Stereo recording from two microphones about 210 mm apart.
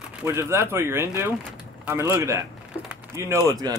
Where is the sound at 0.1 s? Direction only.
10° right (ahead or behind).